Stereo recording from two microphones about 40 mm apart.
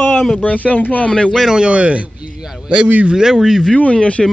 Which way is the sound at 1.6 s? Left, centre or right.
Right.